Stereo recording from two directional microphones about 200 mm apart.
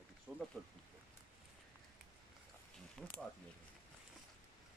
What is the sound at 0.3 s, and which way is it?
Speech, centre (ahead or behind).